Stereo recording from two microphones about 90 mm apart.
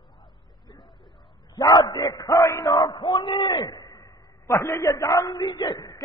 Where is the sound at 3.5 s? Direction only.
50° left (ahead or behind).